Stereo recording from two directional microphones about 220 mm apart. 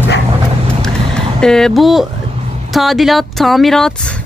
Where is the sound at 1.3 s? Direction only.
5° left (ahead or behind).